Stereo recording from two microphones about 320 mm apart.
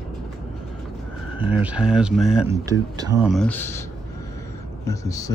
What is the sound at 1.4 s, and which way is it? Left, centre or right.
Speech, centre.